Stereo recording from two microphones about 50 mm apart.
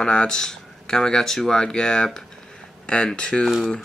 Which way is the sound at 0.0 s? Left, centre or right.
Centre.